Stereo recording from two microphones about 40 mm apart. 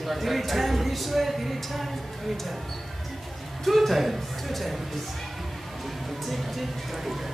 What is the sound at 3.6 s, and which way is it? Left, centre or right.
Speech, centre.